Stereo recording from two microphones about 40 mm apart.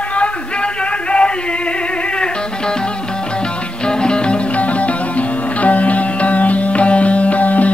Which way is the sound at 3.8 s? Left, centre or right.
Left.